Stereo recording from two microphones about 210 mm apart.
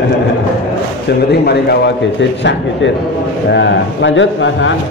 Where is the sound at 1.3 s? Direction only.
50° left (ahead or behind).